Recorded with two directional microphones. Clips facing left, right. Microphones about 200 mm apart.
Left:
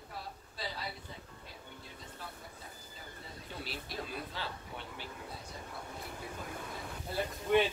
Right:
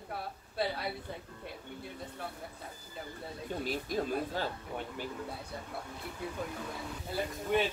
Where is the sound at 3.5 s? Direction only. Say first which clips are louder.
Right 9 dB; 45° right (ahead or behind).